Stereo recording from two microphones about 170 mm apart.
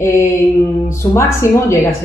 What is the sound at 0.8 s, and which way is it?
Speech, 15° left (ahead or behind).